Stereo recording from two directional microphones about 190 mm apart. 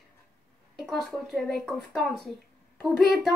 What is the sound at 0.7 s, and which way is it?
A woman's voice, centre (ahead or behind).